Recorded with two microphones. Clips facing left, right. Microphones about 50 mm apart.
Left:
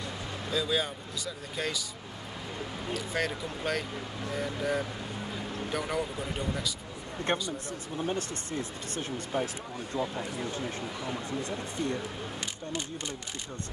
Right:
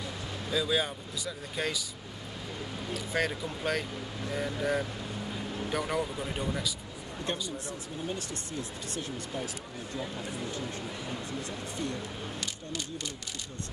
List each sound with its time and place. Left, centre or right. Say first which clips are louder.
0.5 s speech: right 1 dB; centre
2.9 s speech: right 1 dB; centre
7.3 s speech: left 4 dB; left